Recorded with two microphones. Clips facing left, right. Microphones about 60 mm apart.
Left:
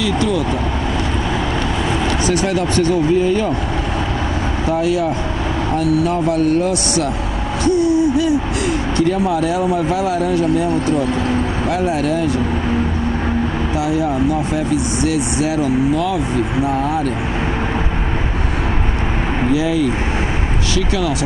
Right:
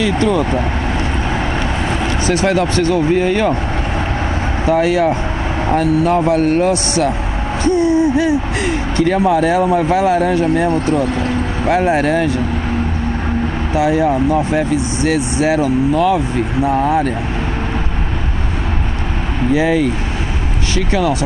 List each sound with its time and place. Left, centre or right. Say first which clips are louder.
0.0 s speech: right 3 dB; right
2.2 s speech: right 5 dB; right
3.2 s speech: right 2 dB; right
4.7 s speech: right 4 dB; right
7.6 s a sound: right 1 dB; right
9.2 s speech: right 4 dB; right
13.7 s speech: right 5 dB; right
19.5 s speech: right 4 dB; right